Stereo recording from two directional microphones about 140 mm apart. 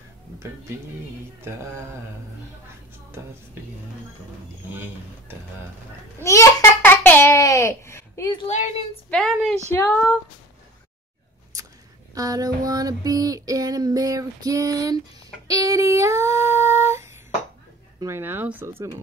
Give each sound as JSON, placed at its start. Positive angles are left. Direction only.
{"t": 6.2, "sound": "babbling", "side_deg": 20}
{"t": 8.5, "sound": "a woman's voice", "side_deg": 55}
{"t": 9.1, "sound": "a woman's voice", "side_deg": 0}
{"t": 9.7, "sound": "speech", "side_deg": 15}
{"t": 12.1, "sound": "female singing", "side_deg": -25}
{"t": 18.0, "sound": "speech", "side_deg": -15}